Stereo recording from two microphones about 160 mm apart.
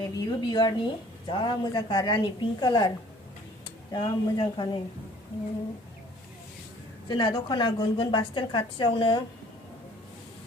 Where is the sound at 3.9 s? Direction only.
30° left (ahead or behind).